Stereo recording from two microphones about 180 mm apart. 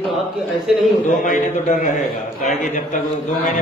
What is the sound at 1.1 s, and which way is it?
A man's voice, 45° left (ahead or behind).